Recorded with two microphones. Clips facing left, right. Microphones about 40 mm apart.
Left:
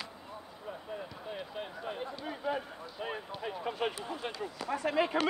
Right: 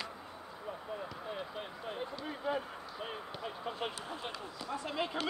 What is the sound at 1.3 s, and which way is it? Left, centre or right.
Speech, centre.